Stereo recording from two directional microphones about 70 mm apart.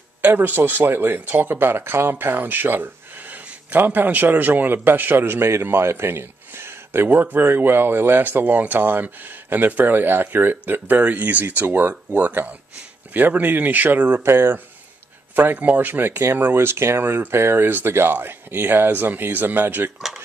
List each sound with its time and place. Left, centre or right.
0.2 s speech: right